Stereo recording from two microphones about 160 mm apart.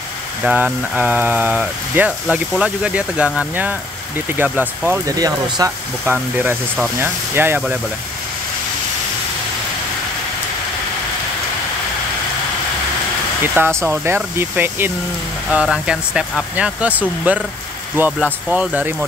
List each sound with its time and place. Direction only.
0.4 s speech: 10° right (ahead or behind)
5.1 s speech: 20° right (ahead or behind)
6.1 s speech: 10° right (ahead or behind)
13.6 s speech: 15° right (ahead or behind)